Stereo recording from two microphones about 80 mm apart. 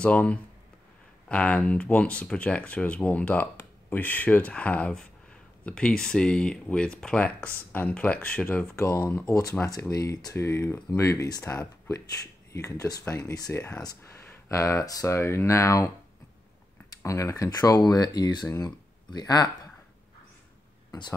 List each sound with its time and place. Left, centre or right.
0.0 s speech: centre
8.9 s speech: left
9.3 s speech: left
11.2 s speech: left
13.1 s speech: left
14.0 s a sound: left
14.5 s speech: left
17.0 s speech: left